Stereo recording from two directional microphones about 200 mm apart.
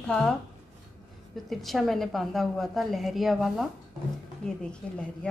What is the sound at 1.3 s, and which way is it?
A woman's voice, centre (ahead or behind).